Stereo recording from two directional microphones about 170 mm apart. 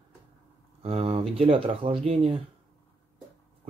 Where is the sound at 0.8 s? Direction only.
35° right (ahead or behind).